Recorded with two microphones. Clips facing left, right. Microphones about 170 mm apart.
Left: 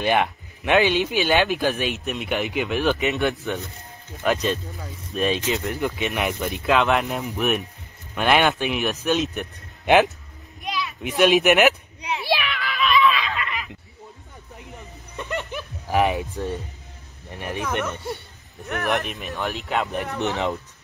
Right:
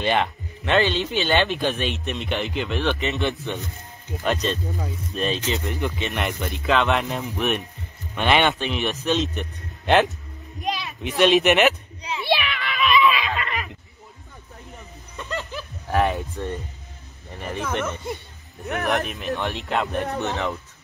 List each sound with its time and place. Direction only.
0.0 s speech: 10° left (ahead or behind)
3.3 s speech: centre (ahead or behind)
10.6 s children playing: 40° right (ahead or behind)
11.0 s speech: 5° left (ahead or behind)
12.3 s a sound: centre (ahead or behind)
13.1 s snicker: 20° right (ahead or behind)
14.7 s a sound: 15° left (ahead or behind)
16.2 s speech: centre (ahead or behind)
20.3 s speech: 20° left (ahead or behind)